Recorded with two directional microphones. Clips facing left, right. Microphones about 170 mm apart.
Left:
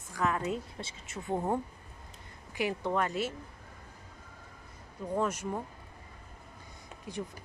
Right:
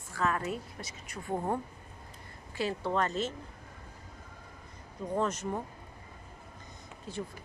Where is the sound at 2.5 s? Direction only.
15° left (ahead or behind).